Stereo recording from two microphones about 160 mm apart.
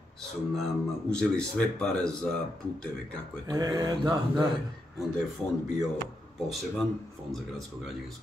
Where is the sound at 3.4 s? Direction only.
25° right (ahead or behind).